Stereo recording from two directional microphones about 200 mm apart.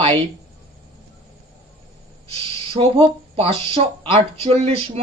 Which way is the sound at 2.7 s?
30° right (ahead or behind).